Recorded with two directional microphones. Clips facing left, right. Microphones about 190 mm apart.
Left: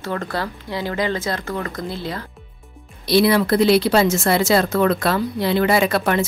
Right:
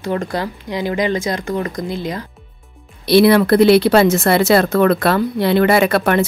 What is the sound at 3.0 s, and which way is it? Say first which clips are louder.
Speech: right 5 dB; 65° right (ahead or behind).